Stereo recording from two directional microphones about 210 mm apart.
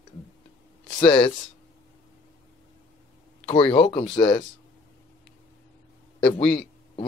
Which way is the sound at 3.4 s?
25° left (ahead or behind).